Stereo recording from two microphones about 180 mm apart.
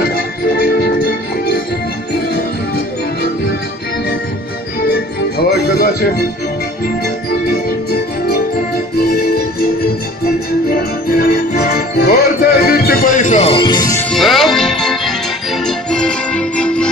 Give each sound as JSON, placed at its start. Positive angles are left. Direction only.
{"t": 0.1, "sound": "music", "side_deg": 55}
{"t": 5.4, "sound": "music", "side_deg": 60}
{"t": 10.7, "sound": "music", "side_deg": 55}
{"t": 14.1, "sound": "music", "side_deg": 0}